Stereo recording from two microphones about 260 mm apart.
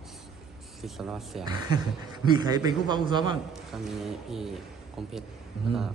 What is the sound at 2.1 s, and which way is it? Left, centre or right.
A man's voice, centre.